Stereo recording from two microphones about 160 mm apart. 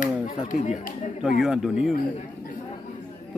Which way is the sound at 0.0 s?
55° left (ahead or behind).